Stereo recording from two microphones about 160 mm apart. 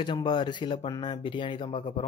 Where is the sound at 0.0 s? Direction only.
30° left (ahead or behind).